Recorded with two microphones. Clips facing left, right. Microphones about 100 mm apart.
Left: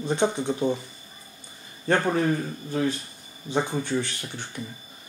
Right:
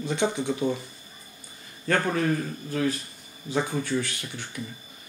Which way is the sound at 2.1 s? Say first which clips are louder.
Left 2 dB; 25° left (ahead or behind).